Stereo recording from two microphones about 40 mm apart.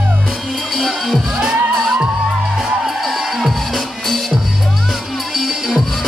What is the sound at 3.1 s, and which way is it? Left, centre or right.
Music, centre.